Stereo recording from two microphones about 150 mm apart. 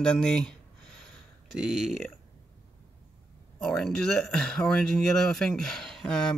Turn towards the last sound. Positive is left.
turn(degrees=5)  # may be behind; listen again after turning